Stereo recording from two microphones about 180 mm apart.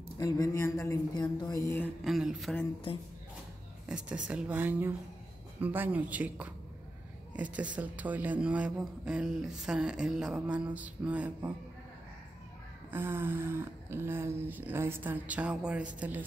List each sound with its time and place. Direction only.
0.2 s speech: 20° left (ahead or behind)
2.0 s a man's voice: centre (ahead or behind)
3.9 s a man's voice: 5° right (ahead or behind)
12.9 s speech: 10° right (ahead or behind)